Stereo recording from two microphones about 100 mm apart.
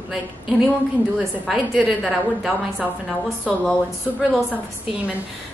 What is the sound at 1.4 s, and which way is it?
Speech, centre (ahead or behind).